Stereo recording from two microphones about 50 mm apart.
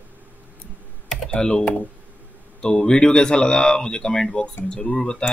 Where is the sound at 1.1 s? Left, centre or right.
Centre.